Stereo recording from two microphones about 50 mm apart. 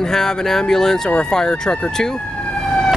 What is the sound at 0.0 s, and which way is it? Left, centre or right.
Speech, centre.